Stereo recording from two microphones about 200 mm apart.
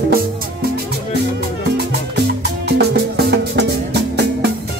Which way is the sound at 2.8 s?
55° right (ahead or behind).